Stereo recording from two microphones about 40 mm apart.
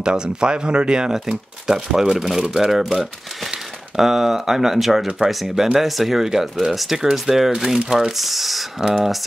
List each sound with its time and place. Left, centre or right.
0.0 s speech: right